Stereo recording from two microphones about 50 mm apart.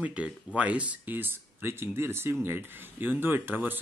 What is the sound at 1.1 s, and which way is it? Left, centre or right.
Speech, right.